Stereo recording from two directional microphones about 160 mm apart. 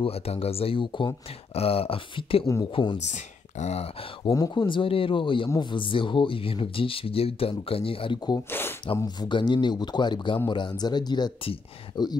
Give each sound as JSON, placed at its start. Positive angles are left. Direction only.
{"t": 0.0, "sound": "speech", "side_deg": 40}
{"t": 3.0, "sound": "speech", "side_deg": 45}
{"t": 4.2, "sound": "speech", "side_deg": 25}
{"t": 8.5, "sound": "speech", "side_deg": 15}
{"t": 8.9, "sound": "a man's voice", "side_deg": 25}